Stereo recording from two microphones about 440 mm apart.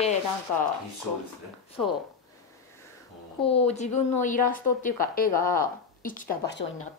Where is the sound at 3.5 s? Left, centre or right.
Centre.